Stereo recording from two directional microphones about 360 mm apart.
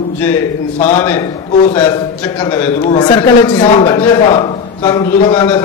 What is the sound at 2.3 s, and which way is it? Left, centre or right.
A man's voice, centre.